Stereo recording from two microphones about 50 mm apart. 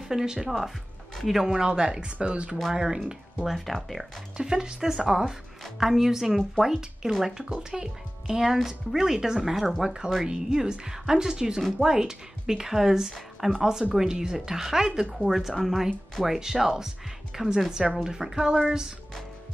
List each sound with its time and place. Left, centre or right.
0.1 s speech: centre
3.4 s speech: centre
4.4 s speech: centre
7.4 s speech: centre